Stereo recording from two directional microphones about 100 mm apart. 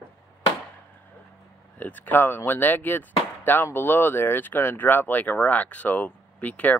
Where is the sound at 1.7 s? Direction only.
15° left (ahead or behind).